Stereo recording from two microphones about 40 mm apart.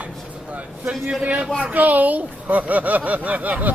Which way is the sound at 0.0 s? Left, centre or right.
Right.